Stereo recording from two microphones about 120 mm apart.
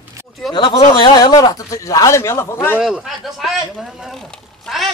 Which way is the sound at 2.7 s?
5° right (ahead or behind).